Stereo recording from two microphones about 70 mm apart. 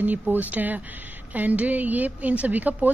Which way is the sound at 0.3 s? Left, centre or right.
Right.